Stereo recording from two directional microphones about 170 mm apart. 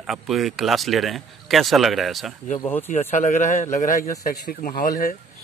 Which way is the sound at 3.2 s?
45° left (ahead or behind).